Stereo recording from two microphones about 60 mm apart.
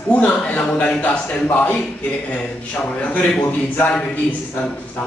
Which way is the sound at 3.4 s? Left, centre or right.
Left.